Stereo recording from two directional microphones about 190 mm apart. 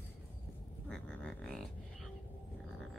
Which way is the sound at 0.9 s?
5° left (ahead or behind).